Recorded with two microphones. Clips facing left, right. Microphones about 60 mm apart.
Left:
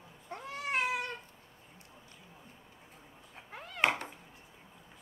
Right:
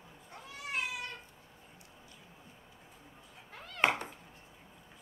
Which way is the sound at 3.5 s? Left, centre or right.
Centre.